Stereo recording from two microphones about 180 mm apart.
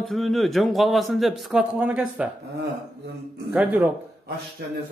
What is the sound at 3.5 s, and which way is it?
Speech, 10° right (ahead or behind).